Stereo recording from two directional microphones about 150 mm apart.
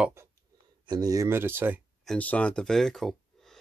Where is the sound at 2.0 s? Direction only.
5° left (ahead or behind).